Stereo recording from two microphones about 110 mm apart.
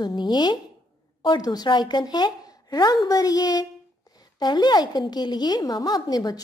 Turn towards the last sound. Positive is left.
turn(degrees=35)  # may be behind; listen again after turning